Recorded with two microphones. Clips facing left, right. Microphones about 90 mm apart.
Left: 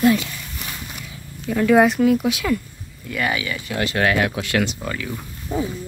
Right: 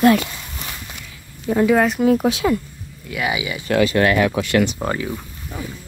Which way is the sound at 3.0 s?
5° right (ahead or behind).